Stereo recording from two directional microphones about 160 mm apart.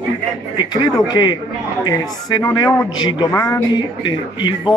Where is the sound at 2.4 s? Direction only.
25° left (ahead or behind).